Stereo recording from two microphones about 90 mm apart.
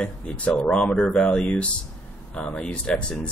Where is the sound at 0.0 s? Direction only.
10° left (ahead or behind).